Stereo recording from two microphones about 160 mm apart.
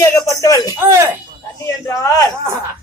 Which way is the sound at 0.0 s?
20° left (ahead or behind).